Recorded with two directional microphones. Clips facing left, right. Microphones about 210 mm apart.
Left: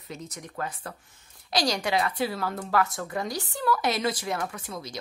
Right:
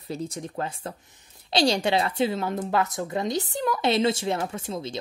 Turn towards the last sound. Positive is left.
turn(degrees=-25)  # may be behind; listen again after turning